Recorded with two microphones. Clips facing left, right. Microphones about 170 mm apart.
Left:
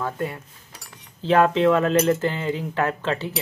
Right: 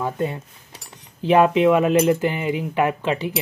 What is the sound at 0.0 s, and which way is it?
Cutlery, 20° right (ahead or behind).